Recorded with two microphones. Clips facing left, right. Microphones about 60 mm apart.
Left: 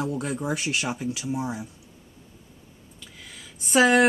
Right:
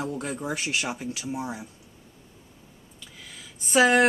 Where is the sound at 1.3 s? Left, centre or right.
Centre.